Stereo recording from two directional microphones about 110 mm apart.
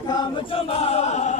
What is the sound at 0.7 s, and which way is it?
Choir, 70° left (ahead or behind).